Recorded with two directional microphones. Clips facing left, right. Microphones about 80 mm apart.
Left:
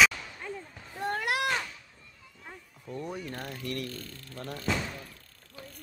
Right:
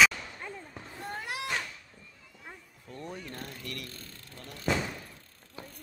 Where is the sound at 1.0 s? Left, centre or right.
Left.